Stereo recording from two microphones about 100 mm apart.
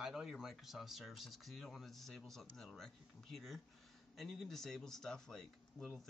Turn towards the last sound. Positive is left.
turn(degrees=5)  # may be behind; listen again after turning